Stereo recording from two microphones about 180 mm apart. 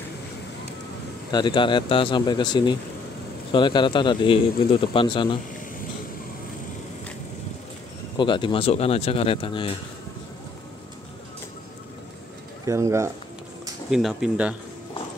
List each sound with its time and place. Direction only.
1.3 s speech: 25° left (ahead or behind)
8.2 s speech: 25° left (ahead or behind)
12.6 s speech: 15° right (ahead or behind)
13.8 s speech: 5° right (ahead or behind)